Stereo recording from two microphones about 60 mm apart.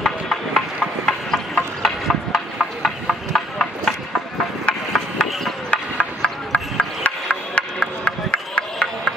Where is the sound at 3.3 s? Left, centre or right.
Centre.